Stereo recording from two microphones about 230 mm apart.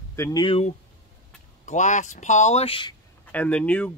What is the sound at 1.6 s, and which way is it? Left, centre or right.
Speech, left.